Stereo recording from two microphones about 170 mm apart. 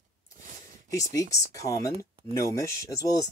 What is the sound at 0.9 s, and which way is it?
Speech, 20° left (ahead or behind).